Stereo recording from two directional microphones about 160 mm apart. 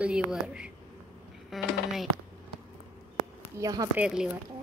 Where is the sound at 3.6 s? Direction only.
20° right (ahead or behind).